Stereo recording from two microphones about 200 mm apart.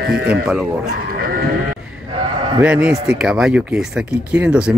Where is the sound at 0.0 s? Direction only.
50° right (ahead or behind).